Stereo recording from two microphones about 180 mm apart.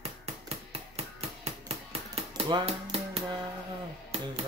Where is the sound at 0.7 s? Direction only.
35° right (ahead or behind).